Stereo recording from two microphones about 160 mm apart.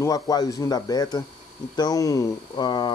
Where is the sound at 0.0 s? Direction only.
20° left (ahead or behind).